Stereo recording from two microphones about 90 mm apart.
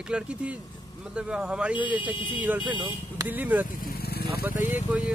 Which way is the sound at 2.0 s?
65° left (ahead or behind).